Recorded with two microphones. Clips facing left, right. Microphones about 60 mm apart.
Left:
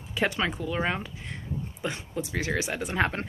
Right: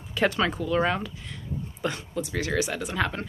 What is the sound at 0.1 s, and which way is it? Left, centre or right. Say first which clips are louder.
A woman's voice: right 3 dB; centre.